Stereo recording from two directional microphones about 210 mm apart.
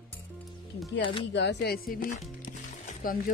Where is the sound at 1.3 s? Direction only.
55° left (ahead or behind).